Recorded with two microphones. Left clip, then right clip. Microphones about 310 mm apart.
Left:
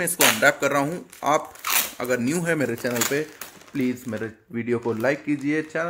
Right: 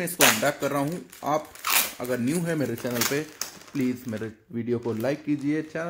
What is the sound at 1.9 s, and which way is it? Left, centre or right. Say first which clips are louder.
Speech: left 4 dB; left.